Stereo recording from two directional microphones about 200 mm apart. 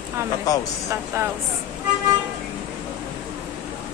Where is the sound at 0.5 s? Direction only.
20° left (ahead or behind).